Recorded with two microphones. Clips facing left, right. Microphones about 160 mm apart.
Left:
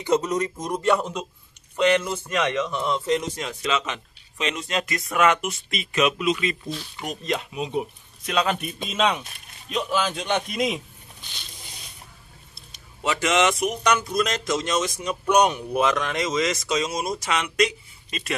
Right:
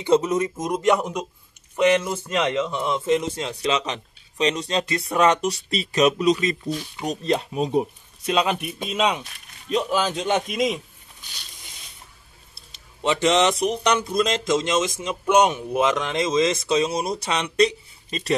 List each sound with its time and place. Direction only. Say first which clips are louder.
0.0 s speech: right 3 dB; 25° right (ahead or behind)
2.3 s a man's voice: right 1 dB; 25° right (ahead or behind)
6.7 s a man's voice: right 4 dB; 10° right (ahead or behind)
7.1 s a man's voice: right 5 dB; 35° right (ahead or behind)
8.3 s speech: right 2 dB; 20° right (ahead or behind)
8.5 s a man's voice: right 1 dB; 5° right (ahead or behind)
9.8 s speech: right 2 dB; 25° right (ahead or behind)
10.3 s a man's voice: right 1 dB; 5° right (ahead or behind)
13.0 s speech: right 3 dB; 30° right (ahead or behind)